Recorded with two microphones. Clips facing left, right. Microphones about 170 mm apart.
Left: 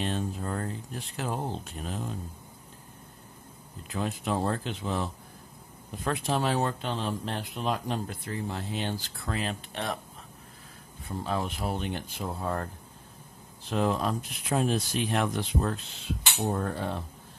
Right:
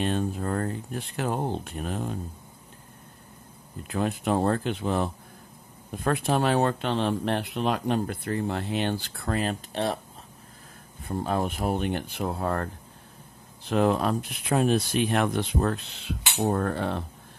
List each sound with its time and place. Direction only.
0.0 s speech: 55° right (ahead or behind)
3.8 s speech: 55° right (ahead or behind); by 9.9 s 35° right (ahead or behind)
11.1 s speech: 50° right (ahead or behind)
13.7 s speech: 60° right (ahead or behind)